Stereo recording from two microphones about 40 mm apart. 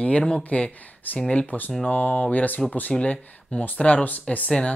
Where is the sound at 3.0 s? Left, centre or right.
Left.